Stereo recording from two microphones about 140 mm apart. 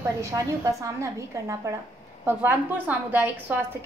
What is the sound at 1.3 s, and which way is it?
A woman's voice, 20° right (ahead or behind).